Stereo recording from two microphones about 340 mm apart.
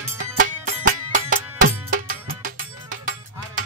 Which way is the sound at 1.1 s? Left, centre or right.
Right.